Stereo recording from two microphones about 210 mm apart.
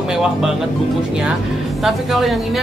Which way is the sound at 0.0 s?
5° right (ahead or behind).